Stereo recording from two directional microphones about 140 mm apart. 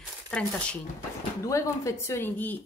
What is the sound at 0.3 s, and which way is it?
Speech, 5° left (ahead or behind).